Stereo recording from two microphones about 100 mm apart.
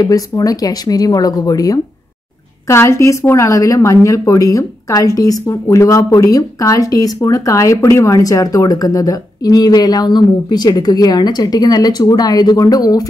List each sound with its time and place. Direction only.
0.0 s speech: 35° left (ahead or behind)
2.7 s speech: 25° left (ahead or behind)